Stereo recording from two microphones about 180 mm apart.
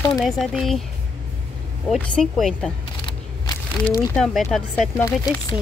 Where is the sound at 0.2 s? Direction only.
Centre (ahead or behind).